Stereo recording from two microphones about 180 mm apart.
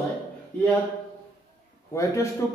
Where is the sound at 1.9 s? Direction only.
15° left (ahead or behind).